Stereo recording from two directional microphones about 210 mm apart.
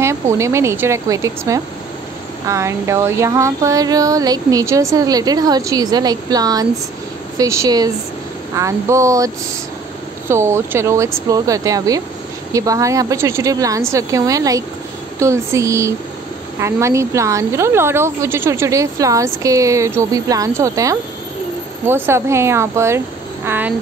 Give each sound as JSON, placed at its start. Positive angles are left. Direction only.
{"t": 0.0, "sound": "speech", "side_deg": -15}